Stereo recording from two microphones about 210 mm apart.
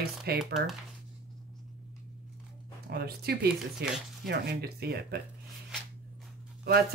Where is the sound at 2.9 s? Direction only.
50° right (ahead or behind).